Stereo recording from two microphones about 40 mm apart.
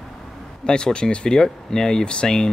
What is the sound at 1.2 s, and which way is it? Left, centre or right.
Speech, centre.